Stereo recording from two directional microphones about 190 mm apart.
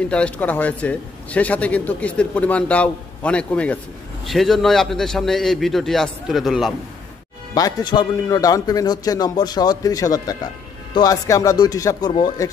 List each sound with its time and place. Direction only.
0.1 s a man's voice: 5° left (ahead or behind)
7.5 s speech: 20° left (ahead or behind)